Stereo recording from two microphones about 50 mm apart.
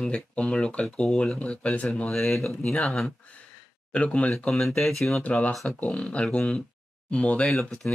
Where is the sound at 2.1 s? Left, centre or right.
Centre.